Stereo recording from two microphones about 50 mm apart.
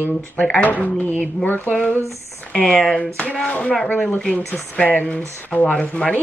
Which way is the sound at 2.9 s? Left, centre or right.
Left.